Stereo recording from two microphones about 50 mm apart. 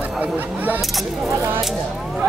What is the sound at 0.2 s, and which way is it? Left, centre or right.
Speech, right.